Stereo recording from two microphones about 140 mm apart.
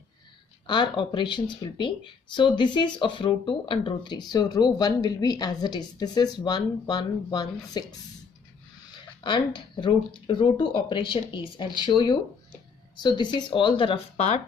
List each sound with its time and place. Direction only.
0.7 s speech: 35° left (ahead or behind)
9.2 s speech: 35° left (ahead or behind)